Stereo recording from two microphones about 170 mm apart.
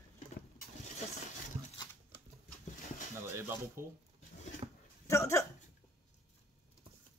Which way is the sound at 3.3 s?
15° right (ahead or behind).